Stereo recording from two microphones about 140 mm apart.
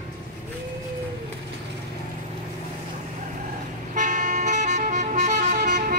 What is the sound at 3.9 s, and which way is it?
Vehicle, 65° right (ahead or behind).